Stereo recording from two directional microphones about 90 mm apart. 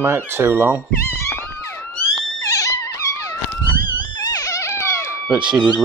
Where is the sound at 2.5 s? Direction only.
35° left (ahead or behind).